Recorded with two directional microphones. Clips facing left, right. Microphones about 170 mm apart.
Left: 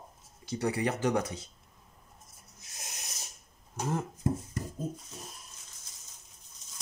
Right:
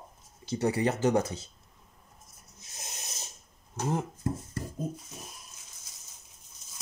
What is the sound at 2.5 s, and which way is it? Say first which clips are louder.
Rub: right 2 dB; 20° right (ahead or behind).